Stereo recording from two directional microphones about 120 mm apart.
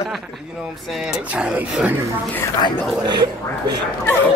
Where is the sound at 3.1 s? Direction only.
40° right (ahead or behind).